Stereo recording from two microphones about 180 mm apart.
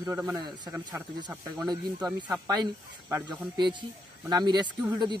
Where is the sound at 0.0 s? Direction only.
15° right (ahead or behind).